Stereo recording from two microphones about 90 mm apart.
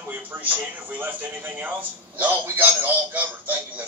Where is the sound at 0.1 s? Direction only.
20° right (ahead or behind).